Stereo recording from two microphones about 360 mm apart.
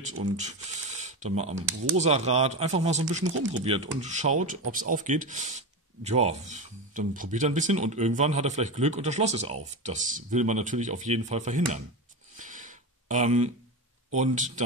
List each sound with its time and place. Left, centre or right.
0.2 s speech: centre
12.4 s a sound: right
14.1 s speech: centre